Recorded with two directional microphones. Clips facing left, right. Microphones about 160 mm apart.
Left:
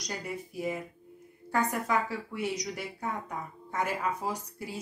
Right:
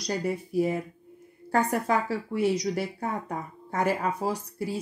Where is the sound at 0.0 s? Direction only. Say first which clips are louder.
Right 8 dB; 35° right (ahead or behind).